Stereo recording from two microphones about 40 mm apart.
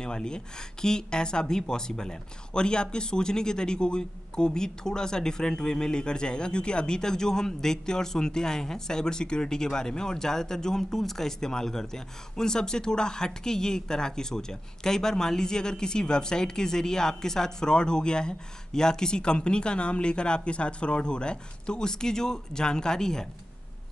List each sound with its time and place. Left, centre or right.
0.0 s speech: left